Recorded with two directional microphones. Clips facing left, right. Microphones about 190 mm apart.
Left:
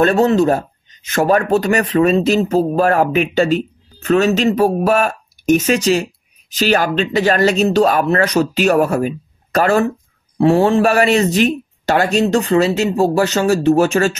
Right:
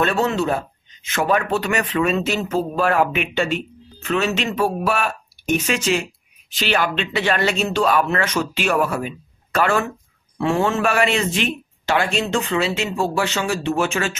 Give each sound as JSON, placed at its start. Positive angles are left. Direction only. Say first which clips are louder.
{"t": 0.0, "sound": "speech", "louder": "left 7 dB", "side_deg": 40}